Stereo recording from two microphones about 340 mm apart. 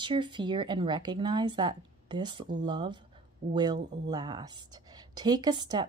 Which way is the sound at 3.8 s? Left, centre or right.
Right.